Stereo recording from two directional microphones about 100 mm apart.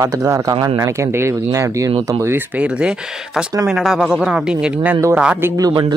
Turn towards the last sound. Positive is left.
turn(degrees=-50)  # may be behind; listen again after turning